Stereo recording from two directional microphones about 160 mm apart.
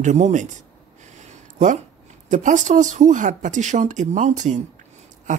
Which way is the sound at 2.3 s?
50° right (ahead or behind).